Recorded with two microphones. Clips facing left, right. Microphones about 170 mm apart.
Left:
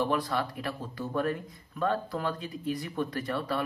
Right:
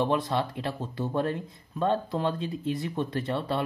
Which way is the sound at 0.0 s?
25° right (ahead or behind).